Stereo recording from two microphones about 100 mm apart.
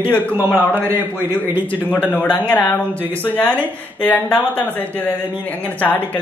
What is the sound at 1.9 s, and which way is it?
Speech, 15° left (ahead or behind).